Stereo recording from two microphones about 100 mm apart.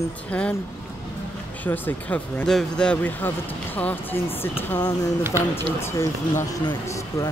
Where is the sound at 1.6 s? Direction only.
15° left (ahead or behind).